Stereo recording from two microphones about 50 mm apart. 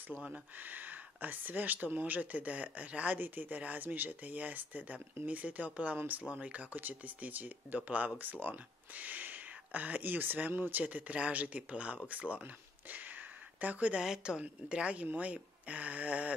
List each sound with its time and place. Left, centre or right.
0.6 s speech: right
3.2 s speech: right
10.8 s speech: right
12.9 s a sound: right
14.0 s a woman's voice: centre
14.4 s speech: right